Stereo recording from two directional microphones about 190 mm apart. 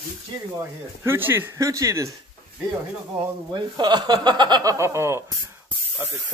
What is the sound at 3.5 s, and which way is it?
Speech, 20° right (ahead or behind).